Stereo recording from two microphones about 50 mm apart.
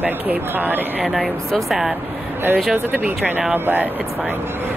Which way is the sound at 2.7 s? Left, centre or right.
Right.